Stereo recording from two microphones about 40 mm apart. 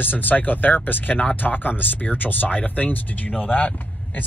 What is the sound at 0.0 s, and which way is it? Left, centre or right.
Speech, left.